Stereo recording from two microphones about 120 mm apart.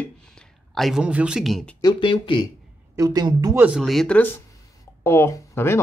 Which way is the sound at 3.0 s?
30° right (ahead or behind).